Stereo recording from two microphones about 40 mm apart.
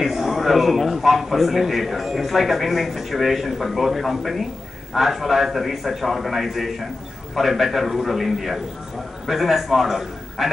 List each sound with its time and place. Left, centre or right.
0.0 s a man's voice: centre